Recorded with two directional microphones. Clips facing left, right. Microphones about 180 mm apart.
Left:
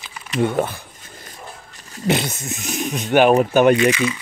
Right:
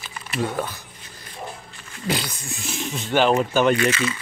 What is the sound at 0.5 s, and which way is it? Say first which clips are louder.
Speech: left 6 dB; 25° left (ahead or behind).